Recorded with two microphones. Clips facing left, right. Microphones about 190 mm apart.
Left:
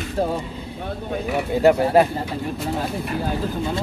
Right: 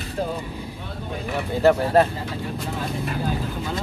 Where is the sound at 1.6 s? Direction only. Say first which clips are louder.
Left 1 dB; 10° left (ahead or behind).